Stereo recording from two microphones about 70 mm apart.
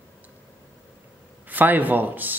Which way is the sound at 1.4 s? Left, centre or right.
Right.